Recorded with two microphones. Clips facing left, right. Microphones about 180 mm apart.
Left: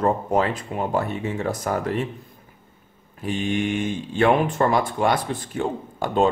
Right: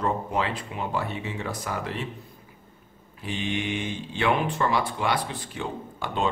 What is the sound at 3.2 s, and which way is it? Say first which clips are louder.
Speech: left 6 dB; 45° left (ahead or behind).